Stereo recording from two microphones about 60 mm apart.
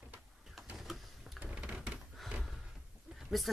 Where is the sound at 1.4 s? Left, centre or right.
Right.